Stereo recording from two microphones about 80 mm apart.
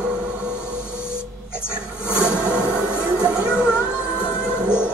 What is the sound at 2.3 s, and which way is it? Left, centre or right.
Music, centre.